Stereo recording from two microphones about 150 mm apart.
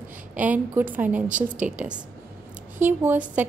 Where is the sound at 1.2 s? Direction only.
60° right (ahead or behind).